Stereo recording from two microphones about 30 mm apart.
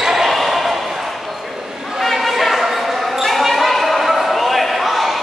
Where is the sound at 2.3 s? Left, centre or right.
Centre.